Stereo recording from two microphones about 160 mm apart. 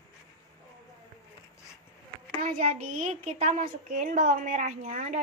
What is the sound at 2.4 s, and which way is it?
A woman's voice, 40° right (ahead or behind).